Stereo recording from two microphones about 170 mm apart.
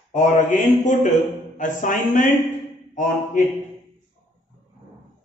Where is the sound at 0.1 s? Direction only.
45° left (ahead or behind).